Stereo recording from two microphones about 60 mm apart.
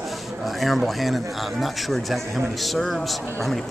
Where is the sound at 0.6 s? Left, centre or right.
Centre.